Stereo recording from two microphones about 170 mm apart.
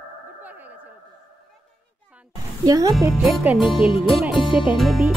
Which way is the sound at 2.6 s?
20° right (ahead or behind).